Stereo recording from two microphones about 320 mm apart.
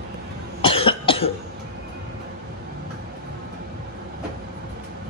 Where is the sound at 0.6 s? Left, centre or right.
Centre.